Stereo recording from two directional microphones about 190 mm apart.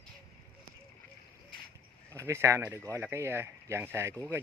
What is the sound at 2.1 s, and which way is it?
Speech, 15° right (ahead or behind).